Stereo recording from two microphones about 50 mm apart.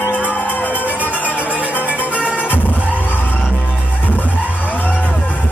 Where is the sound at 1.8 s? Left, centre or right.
Right.